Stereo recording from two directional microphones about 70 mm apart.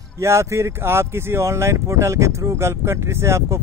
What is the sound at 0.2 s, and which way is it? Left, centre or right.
Speech, right.